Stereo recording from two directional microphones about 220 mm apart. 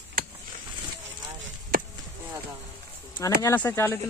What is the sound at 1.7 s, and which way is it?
Chop, 40° right (ahead or behind).